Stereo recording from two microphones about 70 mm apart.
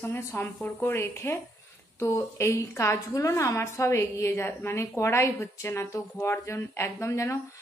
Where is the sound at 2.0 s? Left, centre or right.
Left.